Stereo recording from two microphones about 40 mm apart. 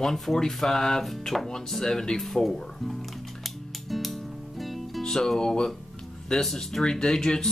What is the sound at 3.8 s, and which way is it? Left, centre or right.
Music, centre.